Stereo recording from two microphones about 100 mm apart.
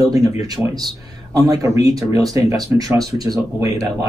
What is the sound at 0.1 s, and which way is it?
Speech, 35° right (ahead or behind).